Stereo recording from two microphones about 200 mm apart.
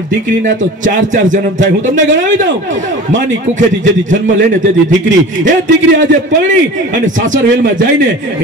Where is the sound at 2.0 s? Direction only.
70° right (ahead or behind).